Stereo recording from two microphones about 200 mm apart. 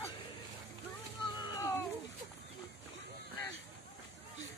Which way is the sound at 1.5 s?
15° left (ahead or behind).